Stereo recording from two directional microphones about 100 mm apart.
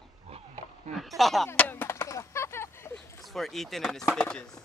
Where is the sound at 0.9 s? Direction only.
Centre (ahead or behind).